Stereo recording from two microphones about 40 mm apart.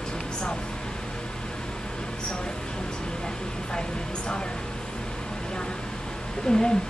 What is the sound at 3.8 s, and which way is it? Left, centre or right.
Speech, left.